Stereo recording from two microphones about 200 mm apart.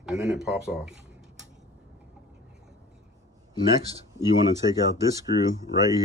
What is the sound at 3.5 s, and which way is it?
Speech, 20° left (ahead or behind).